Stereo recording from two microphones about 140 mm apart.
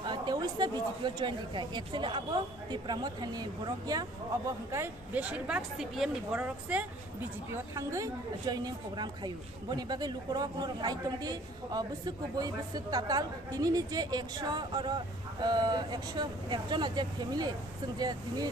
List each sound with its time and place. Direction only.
0.0 s speech: 30° right (ahead or behind)
5.1 s speech: 10° right (ahead or behind)
7.7 s a woman's voice: 25° right (ahead or behind)